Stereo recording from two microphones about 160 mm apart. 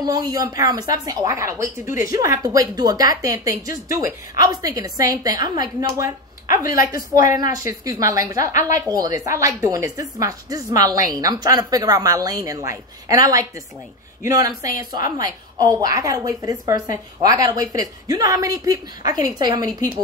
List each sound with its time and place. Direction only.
0.0 s speech: 25° right (ahead or behind)